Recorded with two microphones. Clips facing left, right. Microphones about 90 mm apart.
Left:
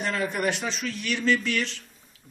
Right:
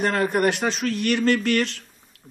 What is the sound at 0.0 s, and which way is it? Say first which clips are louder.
A man's voice: right 6 dB; 50° right (ahead or behind).